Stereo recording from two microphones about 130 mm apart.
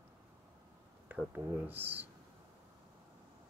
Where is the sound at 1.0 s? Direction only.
10° right (ahead or behind).